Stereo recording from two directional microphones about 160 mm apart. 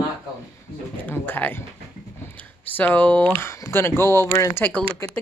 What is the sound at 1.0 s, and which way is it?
Speech, 10° left (ahead or behind).